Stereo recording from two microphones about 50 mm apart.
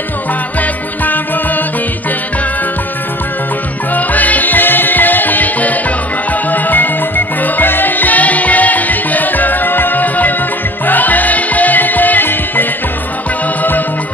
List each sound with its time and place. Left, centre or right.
0.6 s music: left
3.9 s music: left